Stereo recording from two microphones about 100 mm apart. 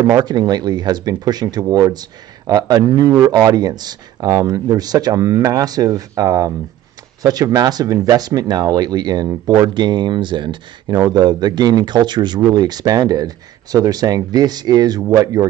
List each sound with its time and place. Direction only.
0.1 s speech: 45° right (ahead or behind)